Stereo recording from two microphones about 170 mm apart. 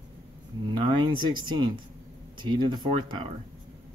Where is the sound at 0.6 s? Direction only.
30° right (ahead or behind).